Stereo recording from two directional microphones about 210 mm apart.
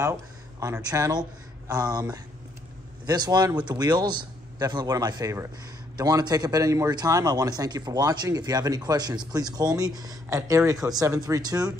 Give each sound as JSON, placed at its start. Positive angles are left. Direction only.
{"t": 0.0, "sound": "a man's voice", "side_deg": -15}